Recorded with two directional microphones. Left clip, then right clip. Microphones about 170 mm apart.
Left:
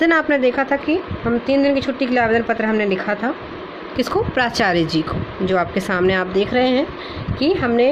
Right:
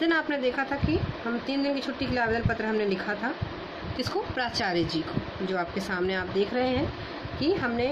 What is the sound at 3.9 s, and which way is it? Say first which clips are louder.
Speech: left 12 dB; 50° left (ahead or behind).